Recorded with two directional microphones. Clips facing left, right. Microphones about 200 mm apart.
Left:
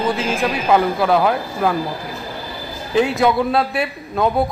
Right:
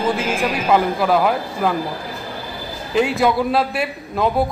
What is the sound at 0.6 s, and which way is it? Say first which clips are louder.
A man's voice: left 1 dB; centre (ahead or behind).